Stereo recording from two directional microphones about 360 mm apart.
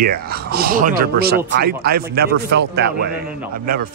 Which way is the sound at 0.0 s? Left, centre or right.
Right.